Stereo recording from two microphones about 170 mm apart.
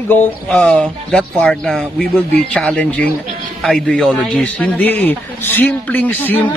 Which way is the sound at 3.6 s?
5° left (ahead or behind).